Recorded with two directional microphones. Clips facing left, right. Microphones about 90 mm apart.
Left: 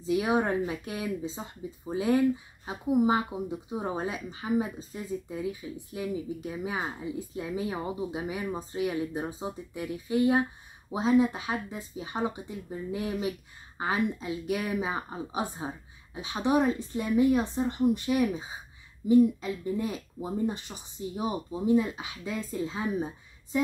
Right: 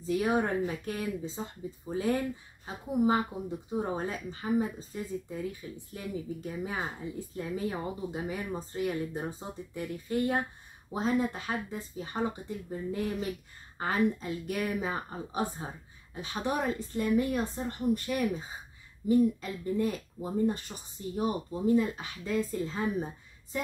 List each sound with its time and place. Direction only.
0.0 s speech: 15° left (ahead or behind)